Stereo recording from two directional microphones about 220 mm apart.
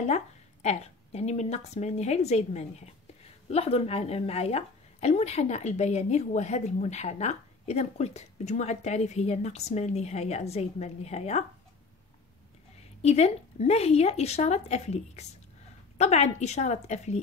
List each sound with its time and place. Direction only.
0.0 s a woman's voice: 30° left (ahead or behind)
13.0 s a woman's voice: 30° left (ahead or behind)